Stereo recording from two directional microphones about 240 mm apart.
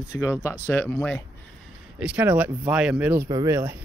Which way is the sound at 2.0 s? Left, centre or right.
Centre.